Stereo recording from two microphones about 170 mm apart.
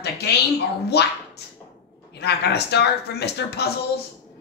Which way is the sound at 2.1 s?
75° left (ahead or behind).